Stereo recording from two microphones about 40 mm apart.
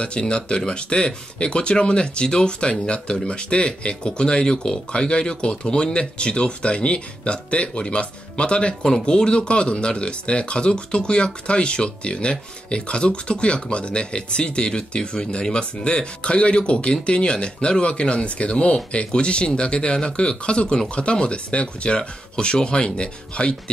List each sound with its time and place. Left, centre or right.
0.0 s speech: left